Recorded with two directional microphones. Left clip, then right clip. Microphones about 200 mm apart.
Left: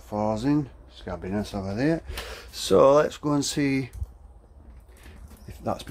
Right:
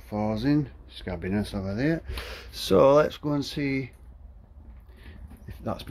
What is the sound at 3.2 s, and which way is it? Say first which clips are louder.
Speech: left 4 dB; 15° left (ahead or behind).